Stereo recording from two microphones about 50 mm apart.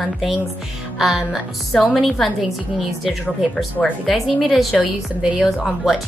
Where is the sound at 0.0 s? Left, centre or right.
Centre.